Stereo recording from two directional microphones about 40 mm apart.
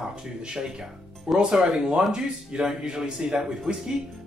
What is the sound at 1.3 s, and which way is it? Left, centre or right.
Speech, centre.